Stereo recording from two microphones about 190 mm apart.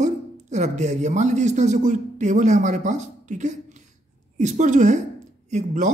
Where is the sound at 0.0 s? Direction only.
40° right (ahead or behind).